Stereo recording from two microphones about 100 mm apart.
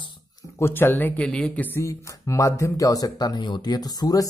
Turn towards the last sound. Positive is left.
turn(degrees=40)  # may be behind; listen again after turning